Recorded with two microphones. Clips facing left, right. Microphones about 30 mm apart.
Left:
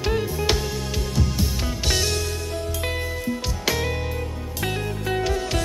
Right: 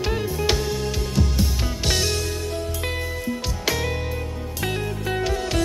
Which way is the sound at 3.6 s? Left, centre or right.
Centre.